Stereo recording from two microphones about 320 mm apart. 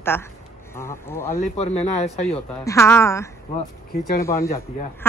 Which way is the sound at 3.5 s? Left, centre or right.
Left.